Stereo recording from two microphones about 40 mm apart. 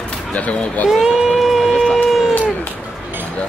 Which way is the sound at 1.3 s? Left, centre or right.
Centre.